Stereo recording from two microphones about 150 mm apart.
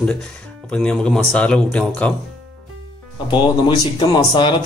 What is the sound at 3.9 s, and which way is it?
Speech, 30° left (ahead or behind).